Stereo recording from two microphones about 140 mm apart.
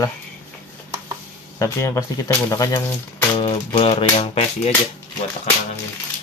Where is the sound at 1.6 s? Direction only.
20° left (ahead or behind).